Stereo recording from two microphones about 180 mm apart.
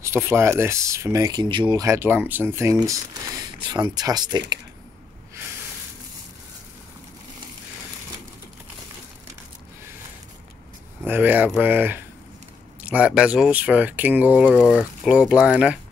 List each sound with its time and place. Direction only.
0.0 s speech: 15° right (ahead or behind)
11.1 s speech: 10° right (ahead or behind)